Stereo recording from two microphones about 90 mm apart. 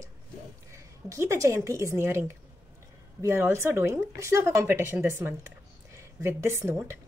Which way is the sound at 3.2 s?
30° right (ahead or behind).